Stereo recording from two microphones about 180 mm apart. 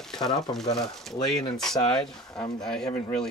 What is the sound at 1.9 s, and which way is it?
Speech, 15° left (ahead or behind).